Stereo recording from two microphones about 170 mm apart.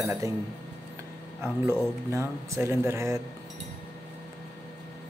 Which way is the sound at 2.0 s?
15° right (ahead or behind).